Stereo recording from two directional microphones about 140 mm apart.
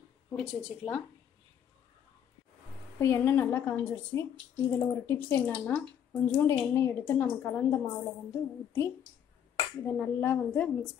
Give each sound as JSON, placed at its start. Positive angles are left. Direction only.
{"t": 0.4, "sound": "speech", "side_deg": 0}
{"t": 3.0, "sound": "speech", "side_deg": 15}
{"t": 6.3, "sound": "a woman's voice", "side_deg": 20}